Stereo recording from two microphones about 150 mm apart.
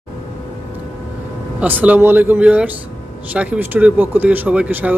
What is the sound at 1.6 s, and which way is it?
Speech, 10° right (ahead or behind).